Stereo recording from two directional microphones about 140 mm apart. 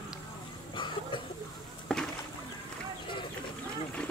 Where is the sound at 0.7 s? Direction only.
35° left (ahead or behind).